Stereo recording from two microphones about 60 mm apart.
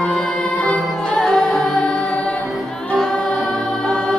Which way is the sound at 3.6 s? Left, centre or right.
Centre.